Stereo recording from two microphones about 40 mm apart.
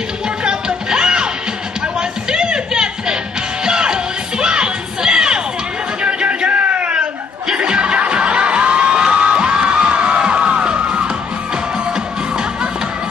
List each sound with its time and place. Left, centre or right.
0.4 s music: right
6.0 s music: right